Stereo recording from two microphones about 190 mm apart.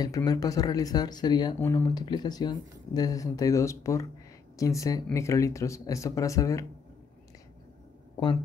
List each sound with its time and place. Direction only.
0.0 s speech: 20° left (ahead or behind)